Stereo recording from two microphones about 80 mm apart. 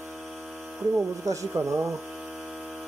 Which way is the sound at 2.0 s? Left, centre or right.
Centre.